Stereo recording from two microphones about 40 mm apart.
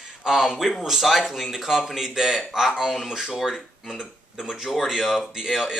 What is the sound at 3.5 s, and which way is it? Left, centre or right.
Speech, centre.